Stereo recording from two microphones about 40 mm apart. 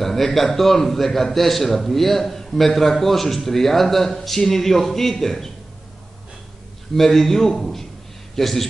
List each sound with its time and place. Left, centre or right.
0.0 s a man's voice: centre
7.0 s a man's voice: centre